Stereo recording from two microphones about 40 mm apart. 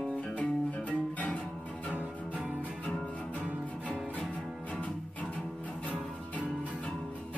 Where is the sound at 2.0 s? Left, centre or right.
Right.